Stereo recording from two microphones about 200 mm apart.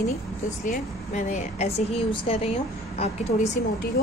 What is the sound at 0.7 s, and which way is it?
A woman's voice, 35° left (ahead or behind).